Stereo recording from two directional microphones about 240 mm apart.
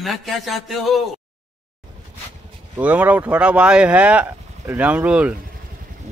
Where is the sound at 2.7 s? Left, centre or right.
Centre.